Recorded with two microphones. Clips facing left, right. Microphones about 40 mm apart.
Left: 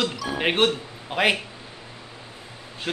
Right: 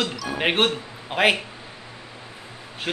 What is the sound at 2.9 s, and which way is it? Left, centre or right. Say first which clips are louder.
Speech: right 1 dB; right.